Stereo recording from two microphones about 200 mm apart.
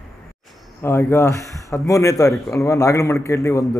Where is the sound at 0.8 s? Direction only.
15° left (ahead or behind).